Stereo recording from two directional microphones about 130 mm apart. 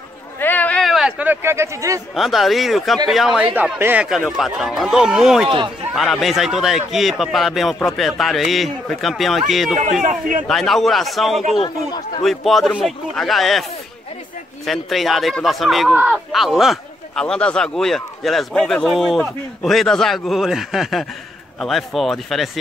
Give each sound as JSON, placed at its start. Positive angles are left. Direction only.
{"t": 0.4, "sound": "a sound", "side_deg": 15}
{"t": 2.1, "sound": "speech", "side_deg": 0}
{"t": 10.0, "sound": "a man's voice", "side_deg": -85}
{"t": 10.4, "sound": "speech", "side_deg": 0}
{"t": 14.7, "sound": "speech", "side_deg": 0}